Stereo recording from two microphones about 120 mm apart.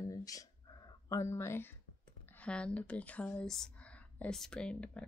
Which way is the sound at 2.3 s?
10° left (ahead or behind).